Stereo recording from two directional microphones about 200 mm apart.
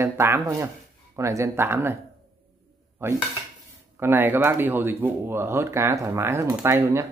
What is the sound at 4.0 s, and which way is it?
Speech, 10° right (ahead or behind).